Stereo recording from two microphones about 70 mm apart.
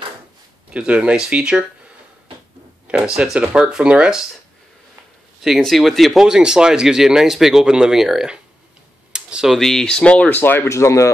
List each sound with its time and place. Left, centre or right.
0.7 s speech: centre
2.9 s speech: centre
5.6 s speech: centre
9.1 s computer keyboard: centre
9.6 s speech: centre
10.7 s speech: left